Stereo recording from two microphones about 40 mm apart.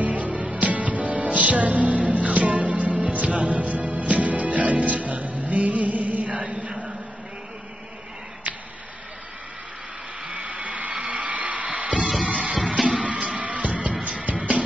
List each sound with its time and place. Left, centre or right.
0.0 s music: right
10.2 s a sound: centre
10.6 s music: right
12.0 s music: centre
13.4 s music: right